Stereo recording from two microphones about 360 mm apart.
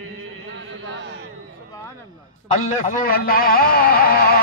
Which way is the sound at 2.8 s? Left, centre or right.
Left.